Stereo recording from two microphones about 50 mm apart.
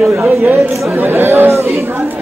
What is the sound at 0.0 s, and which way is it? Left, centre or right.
Speech, right.